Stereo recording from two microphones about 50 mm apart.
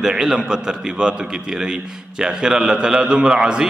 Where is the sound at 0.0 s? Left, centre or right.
Centre.